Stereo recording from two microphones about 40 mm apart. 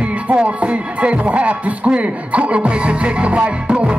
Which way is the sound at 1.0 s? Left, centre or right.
Right.